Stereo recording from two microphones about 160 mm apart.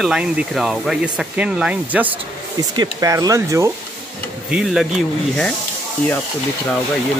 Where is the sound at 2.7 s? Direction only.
25° right (ahead or behind).